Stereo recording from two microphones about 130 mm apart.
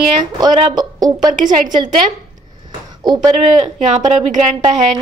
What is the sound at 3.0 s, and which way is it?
Speech, 30° right (ahead or behind).